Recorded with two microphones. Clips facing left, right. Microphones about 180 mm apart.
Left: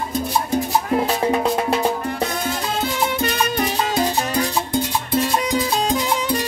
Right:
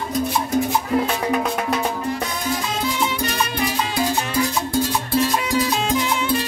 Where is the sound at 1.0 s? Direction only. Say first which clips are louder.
Left 3 dB; 30° left (ahead or behind).